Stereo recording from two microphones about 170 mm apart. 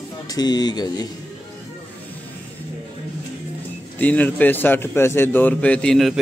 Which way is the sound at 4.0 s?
10° left (ahead or behind).